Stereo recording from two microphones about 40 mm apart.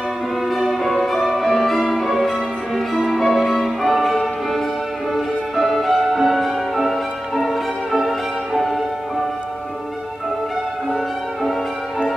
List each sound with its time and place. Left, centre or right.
0.5 s music: centre